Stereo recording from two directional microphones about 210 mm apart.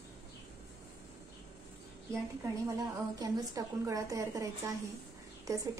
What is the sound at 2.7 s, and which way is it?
A woman's voice, 15° right (ahead or behind).